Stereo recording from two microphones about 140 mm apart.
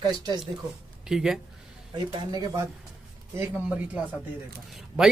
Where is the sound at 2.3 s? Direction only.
30° right (ahead or behind).